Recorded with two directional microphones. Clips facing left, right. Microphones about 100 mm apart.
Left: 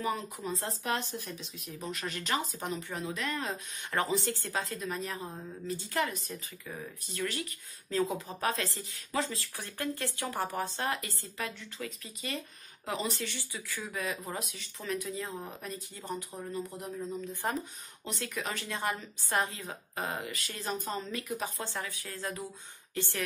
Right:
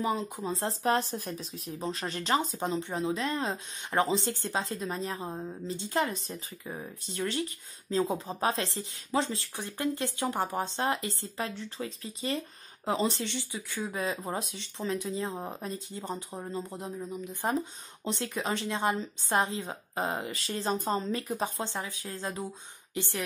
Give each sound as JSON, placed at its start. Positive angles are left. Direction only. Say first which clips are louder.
{"t": 0.0, "sound": "speech", "louder": "right 3 dB", "side_deg": -20}
{"t": 17.0, "sound": "speech", "louder": "right 1 dB", "side_deg": -10}
{"t": 18.0, "sound": "speech", "louder": "right 4 dB", "side_deg": -30}